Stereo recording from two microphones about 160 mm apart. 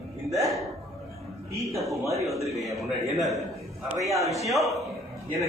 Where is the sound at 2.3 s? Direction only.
Centre (ahead or behind).